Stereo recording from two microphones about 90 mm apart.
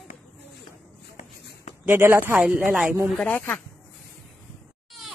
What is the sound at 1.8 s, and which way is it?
Speech, 25° right (ahead or behind).